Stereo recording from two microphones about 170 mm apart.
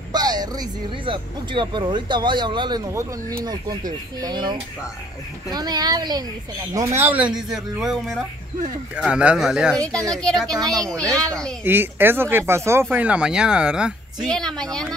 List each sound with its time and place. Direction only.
0.1 s a woman's voice: 25° right (ahead or behind); by 10.5 s 5° left (ahead or behind)
10.5 s speech: 20° right (ahead or behind)
10.8 s a woman's voice: 5° left (ahead or behind)
11.6 s a woman's voice: 10° right (ahead or behind); by 15.0 s 5° left (ahead or behind)